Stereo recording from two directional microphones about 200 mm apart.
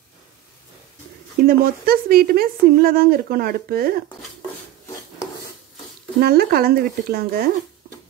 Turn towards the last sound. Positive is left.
turn(degrees=-50)  # may be behind; listen again after turning